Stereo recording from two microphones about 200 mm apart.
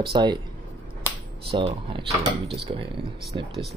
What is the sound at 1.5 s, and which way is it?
Speech, 25° right (ahead or behind).